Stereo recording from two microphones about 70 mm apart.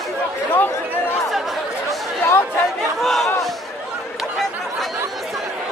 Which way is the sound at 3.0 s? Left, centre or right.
Centre.